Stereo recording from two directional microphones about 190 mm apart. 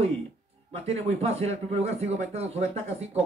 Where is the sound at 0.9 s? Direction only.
35° right (ahead or behind).